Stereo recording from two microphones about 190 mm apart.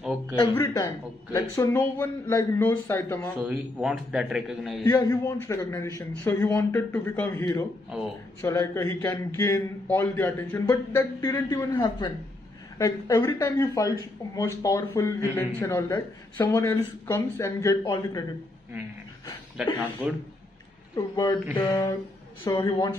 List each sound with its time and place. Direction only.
0.6 s speech: 15° left (ahead or behind)
3.3 s a man's voice: 5° right (ahead or behind)
4.8 s speech: 15° left (ahead or behind)
19.5 s speech: 5° right (ahead or behind)
20.9 s a woman's voice: 20° left (ahead or behind)